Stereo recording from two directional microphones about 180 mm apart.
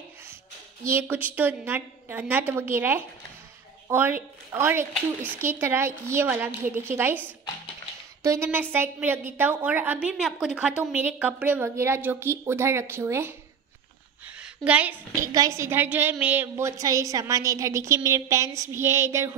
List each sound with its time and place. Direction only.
0.8 s a woman's voice: 10° right (ahead or behind)
15.3 s a woman's voice: 20° right (ahead or behind)